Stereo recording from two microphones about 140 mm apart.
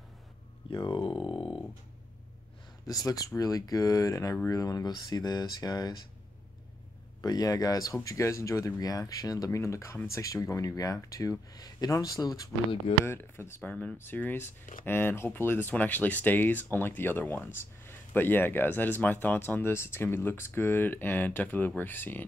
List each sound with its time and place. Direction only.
0.7 s a sound: 35° left (ahead or behind)
2.9 s speech: 25° left (ahead or behind)
7.2 s speech: 25° left (ahead or behind)